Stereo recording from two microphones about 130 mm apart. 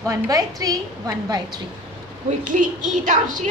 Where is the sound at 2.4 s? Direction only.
80° right.